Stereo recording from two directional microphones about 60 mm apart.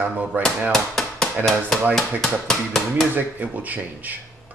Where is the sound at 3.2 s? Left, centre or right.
Right.